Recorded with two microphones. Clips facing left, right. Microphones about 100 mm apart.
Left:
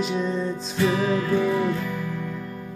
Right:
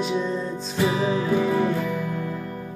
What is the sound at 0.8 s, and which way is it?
Music, 20° right (ahead or behind).